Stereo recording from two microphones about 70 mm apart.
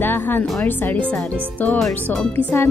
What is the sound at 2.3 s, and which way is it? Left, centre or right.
Speech, left.